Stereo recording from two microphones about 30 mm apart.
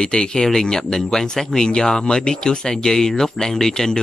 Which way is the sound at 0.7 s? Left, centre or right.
Centre.